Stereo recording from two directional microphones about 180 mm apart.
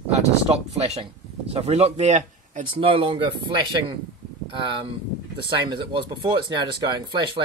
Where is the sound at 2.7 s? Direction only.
30° right (ahead or behind).